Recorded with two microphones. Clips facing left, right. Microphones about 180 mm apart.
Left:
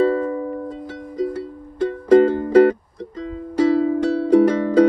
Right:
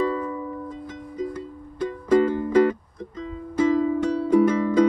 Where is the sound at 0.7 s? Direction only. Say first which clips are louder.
Left 4 dB; 80° left.